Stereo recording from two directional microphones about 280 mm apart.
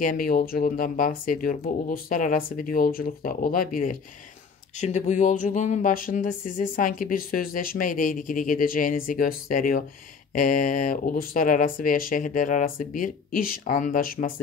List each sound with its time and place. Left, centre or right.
0.0 s speech: left